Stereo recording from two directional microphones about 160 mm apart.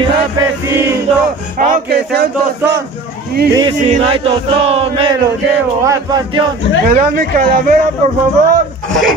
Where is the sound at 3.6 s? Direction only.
30° right (ahead or behind).